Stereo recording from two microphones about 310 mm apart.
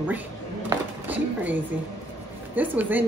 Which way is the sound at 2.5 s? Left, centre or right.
Centre.